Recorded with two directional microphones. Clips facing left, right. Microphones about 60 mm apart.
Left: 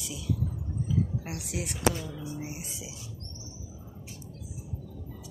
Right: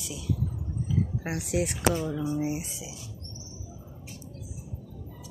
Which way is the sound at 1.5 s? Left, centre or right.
Right.